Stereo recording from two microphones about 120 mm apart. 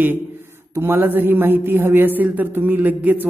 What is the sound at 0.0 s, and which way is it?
A man's voice, 15° right (ahead or behind).